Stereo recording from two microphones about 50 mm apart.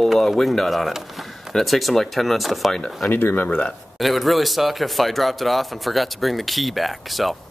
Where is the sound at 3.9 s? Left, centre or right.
Centre.